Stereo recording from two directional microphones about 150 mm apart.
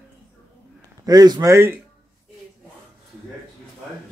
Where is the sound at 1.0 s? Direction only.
25° right (ahead or behind).